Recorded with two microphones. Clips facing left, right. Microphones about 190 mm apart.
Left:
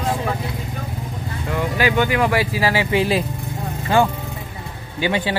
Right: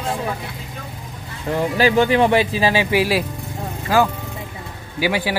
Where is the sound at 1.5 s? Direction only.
30° right (ahead or behind); by 5.4 s 10° right (ahead or behind).